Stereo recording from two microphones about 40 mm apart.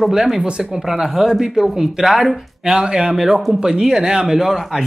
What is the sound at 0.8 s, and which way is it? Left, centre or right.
Speech, centre.